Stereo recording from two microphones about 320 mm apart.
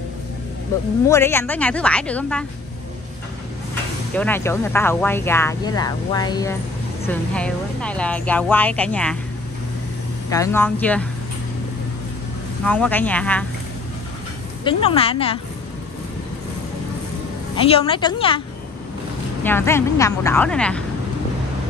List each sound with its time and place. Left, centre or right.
1.0 s speech: centre
4.1 s speech: centre
10.3 s speech: centre
12.6 s speech: centre
14.6 s speech: centre
17.6 s speech: centre
19.4 s speech: centre